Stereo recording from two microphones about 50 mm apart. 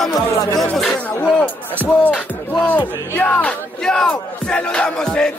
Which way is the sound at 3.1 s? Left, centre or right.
Left.